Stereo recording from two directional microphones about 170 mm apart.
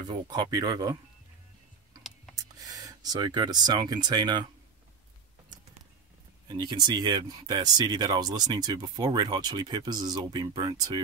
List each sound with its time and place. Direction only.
0.0 s speech: 25° right (ahead or behind)
2.3 s speech: 20° right (ahead or behind)
6.4 s speech: 25° right (ahead or behind)